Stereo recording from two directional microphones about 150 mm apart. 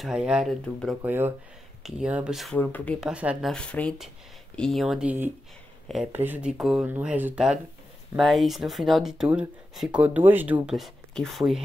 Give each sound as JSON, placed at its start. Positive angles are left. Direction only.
{"t": 0.0, "sound": "speech", "side_deg": -5}
{"t": 1.8, "sound": "speech", "side_deg": -5}
{"t": 2.5, "sound": "speech", "side_deg": 10}
{"t": 3.0, "sound": "speech", "side_deg": -5}